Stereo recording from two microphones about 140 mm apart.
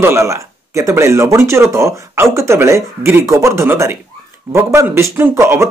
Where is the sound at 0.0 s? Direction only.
20° right (ahead or behind).